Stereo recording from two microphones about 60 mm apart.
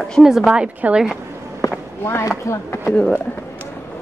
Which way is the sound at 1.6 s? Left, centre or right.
Left.